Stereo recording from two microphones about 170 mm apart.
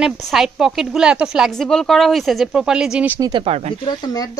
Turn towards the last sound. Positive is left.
turn(degrees=20)  # may be behind; listen again after turning